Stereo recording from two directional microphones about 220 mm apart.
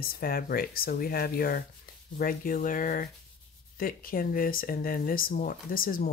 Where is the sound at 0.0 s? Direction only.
40° left (ahead or behind).